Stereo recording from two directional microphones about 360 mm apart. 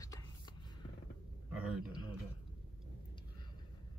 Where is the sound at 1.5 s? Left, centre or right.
Centre.